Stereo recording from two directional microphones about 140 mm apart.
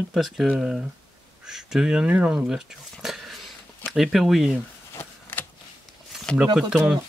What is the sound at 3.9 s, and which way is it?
Speech, centre (ahead or behind).